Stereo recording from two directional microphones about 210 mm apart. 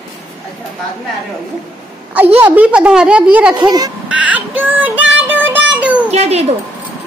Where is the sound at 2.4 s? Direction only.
10° right (ahead or behind).